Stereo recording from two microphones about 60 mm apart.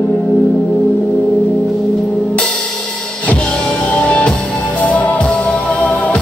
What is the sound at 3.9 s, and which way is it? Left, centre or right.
Music, left.